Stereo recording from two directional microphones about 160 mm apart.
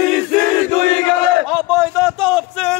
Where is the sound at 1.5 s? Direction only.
5° right (ahead or behind).